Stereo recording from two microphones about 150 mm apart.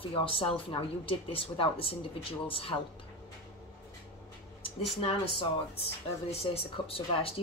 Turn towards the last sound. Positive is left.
turn(degrees=40)  # may be behind; listen again after turning